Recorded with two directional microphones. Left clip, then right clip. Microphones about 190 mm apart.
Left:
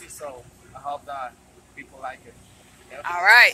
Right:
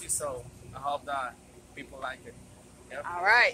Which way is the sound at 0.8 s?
25° right (ahead or behind).